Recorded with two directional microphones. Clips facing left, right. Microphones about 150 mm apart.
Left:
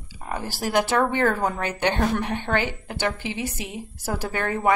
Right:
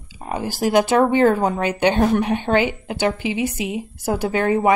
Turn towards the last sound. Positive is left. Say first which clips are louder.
# right 8 dB
turn(degrees=-20)  # may be behind; listen again after turning